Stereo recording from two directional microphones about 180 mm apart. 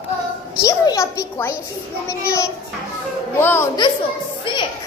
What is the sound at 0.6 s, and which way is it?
Speech, 20° left (ahead or behind).